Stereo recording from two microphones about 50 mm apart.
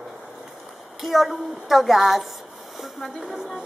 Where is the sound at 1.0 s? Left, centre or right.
Centre.